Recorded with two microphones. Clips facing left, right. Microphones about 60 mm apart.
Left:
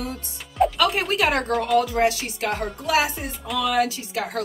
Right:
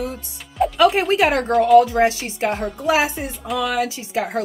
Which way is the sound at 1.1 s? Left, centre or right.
Right.